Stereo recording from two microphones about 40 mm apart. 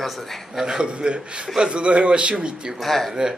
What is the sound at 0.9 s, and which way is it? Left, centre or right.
Speech, right.